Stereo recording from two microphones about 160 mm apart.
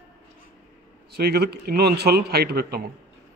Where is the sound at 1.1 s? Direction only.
90° right.